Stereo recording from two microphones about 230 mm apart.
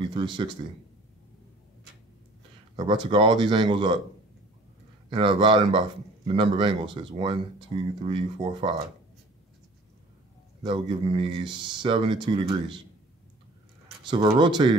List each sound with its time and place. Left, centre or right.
0.1 s speech: right
2.7 s speech: centre
5.1 s speech: right
10.6 s speech: right
14.0 s speech: centre